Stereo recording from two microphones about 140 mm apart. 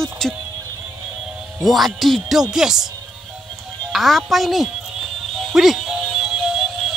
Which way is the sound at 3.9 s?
Centre (ahead or behind).